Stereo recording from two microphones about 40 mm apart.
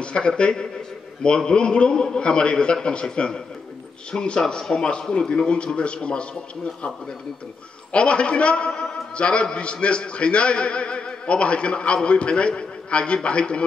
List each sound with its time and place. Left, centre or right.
0.0 s a sound: left
0.4 s a man's voice: left
7.9 s a man's voice: left